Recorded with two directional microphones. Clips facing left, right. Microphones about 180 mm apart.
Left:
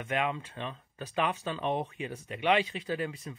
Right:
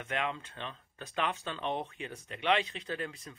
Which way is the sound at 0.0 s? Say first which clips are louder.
Left 4 dB; 10° left (ahead or behind).